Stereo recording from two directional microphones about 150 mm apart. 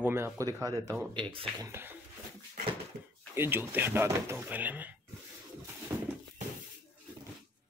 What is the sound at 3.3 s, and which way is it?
Speech, 15° right (ahead or behind).